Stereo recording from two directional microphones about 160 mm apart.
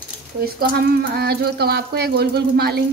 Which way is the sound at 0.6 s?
80° right.